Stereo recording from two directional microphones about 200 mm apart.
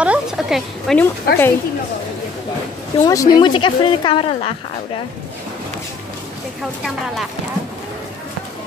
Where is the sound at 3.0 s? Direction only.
15° left (ahead or behind).